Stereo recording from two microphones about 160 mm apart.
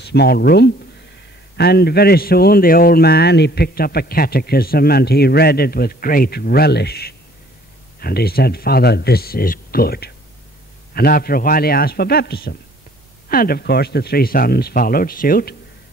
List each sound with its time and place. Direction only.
0.0 s a man's voice: 90° left
13.3 s a man's voice: 65° left (ahead or behind)